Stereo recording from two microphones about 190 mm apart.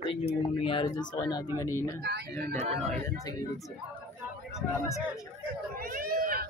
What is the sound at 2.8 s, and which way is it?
Speech, 5° left (ahead or behind).